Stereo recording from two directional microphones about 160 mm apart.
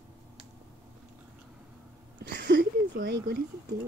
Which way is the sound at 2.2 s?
90° right.